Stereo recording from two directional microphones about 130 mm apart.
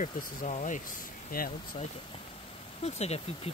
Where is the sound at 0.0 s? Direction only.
75° left (ahead or behind).